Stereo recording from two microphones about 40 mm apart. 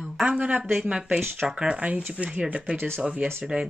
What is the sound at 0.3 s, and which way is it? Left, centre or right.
Speech, right.